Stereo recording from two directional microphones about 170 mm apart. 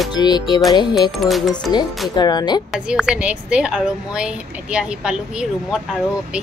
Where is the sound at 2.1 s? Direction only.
25° left (ahead or behind).